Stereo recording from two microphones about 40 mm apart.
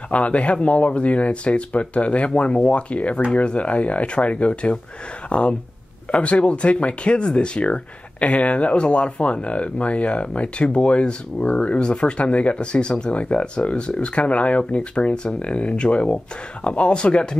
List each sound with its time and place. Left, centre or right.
0.1 s speech: left